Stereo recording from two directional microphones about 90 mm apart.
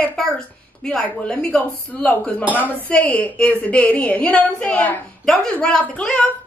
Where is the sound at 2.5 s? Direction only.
20° left (ahead or behind).